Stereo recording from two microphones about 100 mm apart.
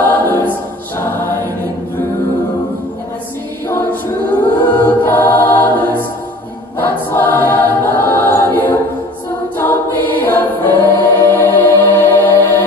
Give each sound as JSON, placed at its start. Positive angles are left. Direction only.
{"t": 0.0, "sound": "choir", "side_deg": 20}
{"t": 3.6, "sound": "choir", "side_deg": 20}
{"t": 10.2, "sound": "choir", "side_deg": 20}